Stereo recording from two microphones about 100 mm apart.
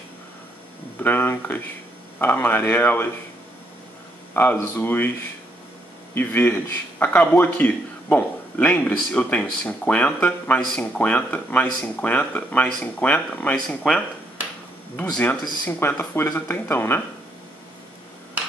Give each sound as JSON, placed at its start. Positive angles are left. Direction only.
{"t": 1.0, "sound": "speech", "side_deg": 20}
{"t": 4.3, "sound": "a man's voice", "side_deg": 20}
{"t": 6.1, "sound": "a man's voice", "side_deg": 20}
{"t": 15.0, "sound": "a man's voice", "side_deg": 15}